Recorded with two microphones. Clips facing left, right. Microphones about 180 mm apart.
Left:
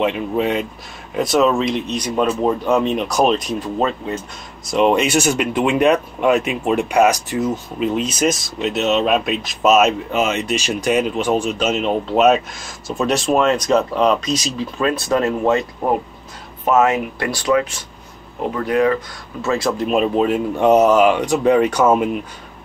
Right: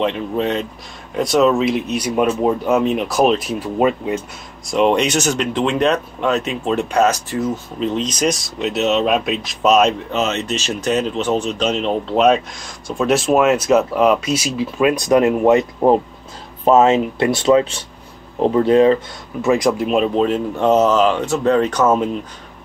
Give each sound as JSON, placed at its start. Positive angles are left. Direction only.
{"t": 0.0, "sound": "speech", "side_deg": 10}
{"t": 4.6, "sound": "speech", "side_deg": 0}
{"t": 16.6, "sound": "speech", "side_deg": -25}
{"t": 19.4, "sound": "speech", "side_deg": -15}
{"t": 19.9, "sound": "speech", "side_deg": 5}